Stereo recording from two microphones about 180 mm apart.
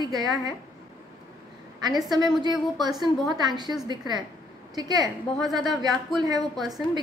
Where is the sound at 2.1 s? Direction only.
25° right (ahead or behind).